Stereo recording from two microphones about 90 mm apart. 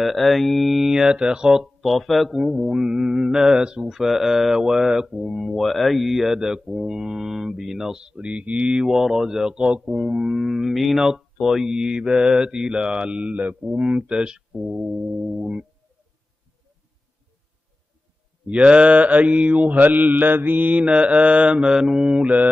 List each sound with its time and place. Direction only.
0.0 s speech: centre (ahead or behind)
18.5 s speech: 15° right (ahead or behind)